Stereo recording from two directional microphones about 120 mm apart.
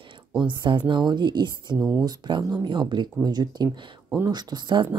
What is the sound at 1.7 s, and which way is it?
Speech, 15° right (ahead or behind).